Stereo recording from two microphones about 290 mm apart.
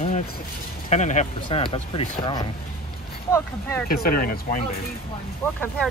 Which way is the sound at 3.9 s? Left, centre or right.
Left.